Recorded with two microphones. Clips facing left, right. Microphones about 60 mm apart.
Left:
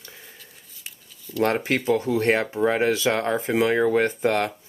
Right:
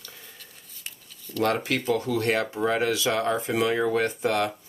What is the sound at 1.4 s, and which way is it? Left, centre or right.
Speech, left.